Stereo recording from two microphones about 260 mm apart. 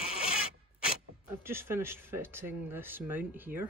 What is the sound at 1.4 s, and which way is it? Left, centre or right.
Speech, centre.